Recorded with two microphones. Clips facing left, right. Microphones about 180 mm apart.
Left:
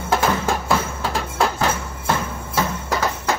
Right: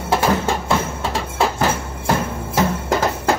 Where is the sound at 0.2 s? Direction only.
Centre (ahead or behind).